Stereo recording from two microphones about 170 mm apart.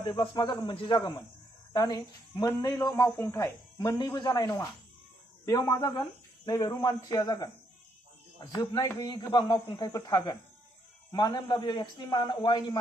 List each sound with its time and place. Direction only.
0.0 s a woman's voice: 25° left (ahead or behind)